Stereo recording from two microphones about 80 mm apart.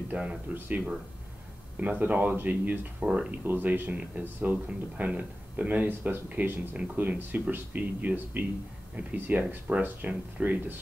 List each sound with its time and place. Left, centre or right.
0.1 s speech: centre